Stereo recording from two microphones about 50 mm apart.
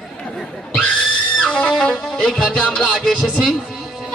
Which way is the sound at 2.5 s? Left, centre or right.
Centre.